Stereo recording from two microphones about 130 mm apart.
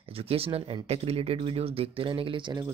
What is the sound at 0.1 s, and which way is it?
Speech, 50° right (ahead or behind).